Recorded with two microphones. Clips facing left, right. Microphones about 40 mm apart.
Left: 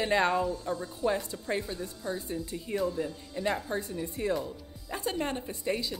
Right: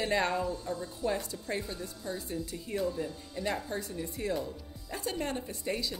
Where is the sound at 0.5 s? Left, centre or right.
Left.